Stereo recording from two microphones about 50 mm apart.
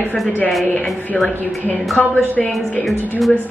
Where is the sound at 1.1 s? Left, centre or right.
Centre.